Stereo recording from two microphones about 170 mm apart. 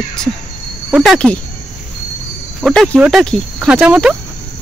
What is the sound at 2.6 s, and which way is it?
Speech, centre (ahead or behind).